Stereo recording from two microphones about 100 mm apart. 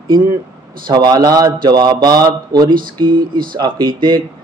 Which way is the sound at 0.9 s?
45° right (ahead or behind).